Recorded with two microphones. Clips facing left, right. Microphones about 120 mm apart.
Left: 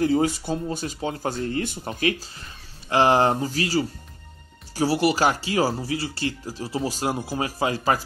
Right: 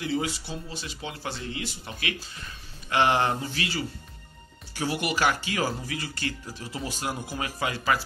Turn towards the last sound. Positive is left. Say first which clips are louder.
# left 4 dB
turn(degrees=35)  # may be behind; listen again after turning